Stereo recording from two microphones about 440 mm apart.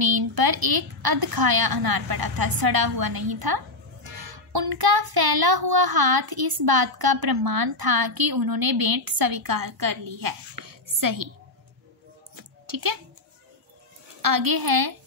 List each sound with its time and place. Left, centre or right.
0.0 s a woman's voice: right
12.4 s a sound: right
14.2 s a woman's voice: right